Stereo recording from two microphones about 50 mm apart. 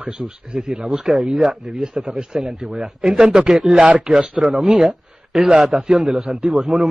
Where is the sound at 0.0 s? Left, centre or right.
Right.